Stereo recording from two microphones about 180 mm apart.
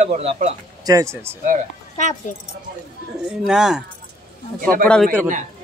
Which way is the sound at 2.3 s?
45° left (ahead or behind).